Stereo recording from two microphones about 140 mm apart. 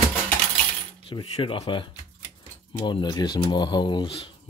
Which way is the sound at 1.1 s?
40° left (ahead or behind).